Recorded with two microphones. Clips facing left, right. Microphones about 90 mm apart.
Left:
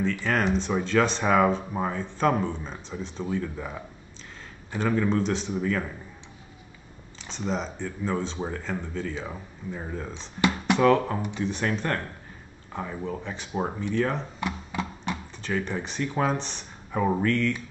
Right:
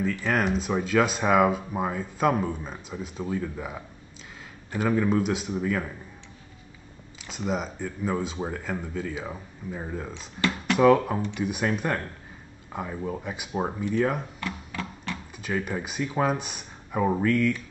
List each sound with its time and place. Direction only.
0.0 s speech: 5° right (ahead or behind)
7.2 s speech: 10° right (ahead or behind)
14.4 s a sound: 20° left (ahead or behind)
15.3 s speech: 10° right (ahead or behind)